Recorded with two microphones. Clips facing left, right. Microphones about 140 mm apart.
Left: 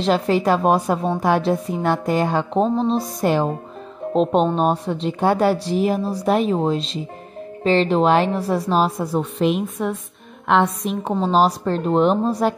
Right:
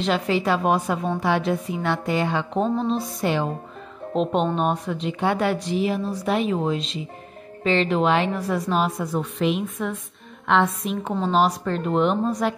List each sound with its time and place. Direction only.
0.0 s a woman's voice: 40° left (ahead or behind)